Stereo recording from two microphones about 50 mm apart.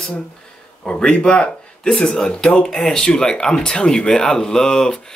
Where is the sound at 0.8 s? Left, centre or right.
Centre.